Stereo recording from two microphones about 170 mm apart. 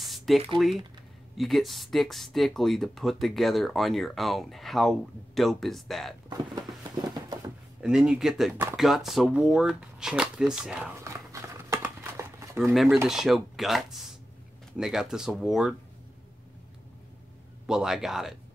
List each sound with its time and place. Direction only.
0.0 s a sound: centre (ahead or behind)
0.6 s speech: centre (ahead or behind)
6.2 s a sound: 25° right (ahead or behind)
7.8 s speech: 5° right (ahead or behind)
12.8 s speech: 5° right (ahead or behind)
17.6 s speech: 5° right (ahead or behind)